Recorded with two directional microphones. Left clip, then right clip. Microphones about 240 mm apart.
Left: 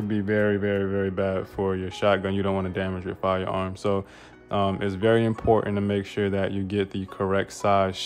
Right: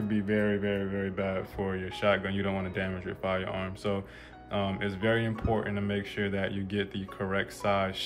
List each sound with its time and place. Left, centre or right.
0.1 s speech: centre